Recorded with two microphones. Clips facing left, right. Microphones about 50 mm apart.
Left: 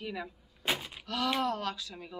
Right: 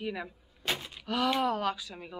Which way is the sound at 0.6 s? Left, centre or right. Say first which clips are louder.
Left 1 dB; centre.